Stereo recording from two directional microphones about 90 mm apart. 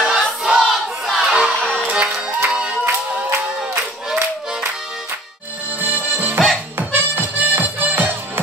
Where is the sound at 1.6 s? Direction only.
5° left (ahead or behind).